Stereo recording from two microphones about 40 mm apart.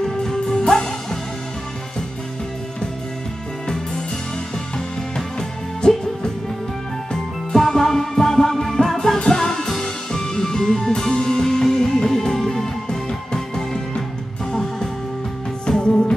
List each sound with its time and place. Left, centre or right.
0.0 s music: centre
3.6 s music: centre
5.8 s music: centre